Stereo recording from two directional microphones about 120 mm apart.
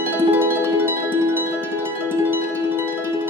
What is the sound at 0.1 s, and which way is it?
Music, 15° right (ahead or behind).